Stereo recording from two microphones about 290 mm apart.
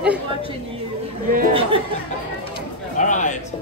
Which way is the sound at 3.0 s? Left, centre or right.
Left.